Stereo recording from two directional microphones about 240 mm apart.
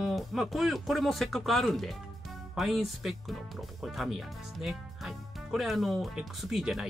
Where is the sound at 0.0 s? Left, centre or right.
Centre.